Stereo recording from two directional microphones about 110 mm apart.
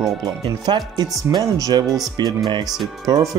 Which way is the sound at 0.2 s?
40° right (ahead or behind).